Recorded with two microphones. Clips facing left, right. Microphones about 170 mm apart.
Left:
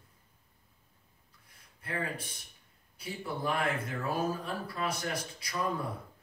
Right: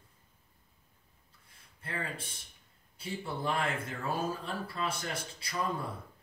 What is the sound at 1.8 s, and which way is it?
Speech, 25° right (ahead or behind).